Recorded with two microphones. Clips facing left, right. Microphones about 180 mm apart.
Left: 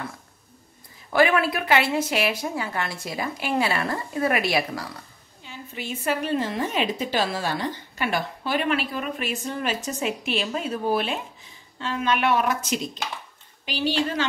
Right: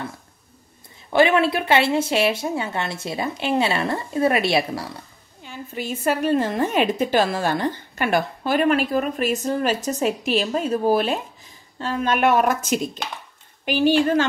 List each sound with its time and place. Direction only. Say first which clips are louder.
1.1 s a woman's voice: right 3 dB; 25° right (ahead or behind)
5.4 s a woman's voice: right 5 dB; 45° right (ahead or behind)